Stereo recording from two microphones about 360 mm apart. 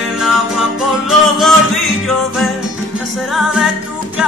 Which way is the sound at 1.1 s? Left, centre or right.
Centre.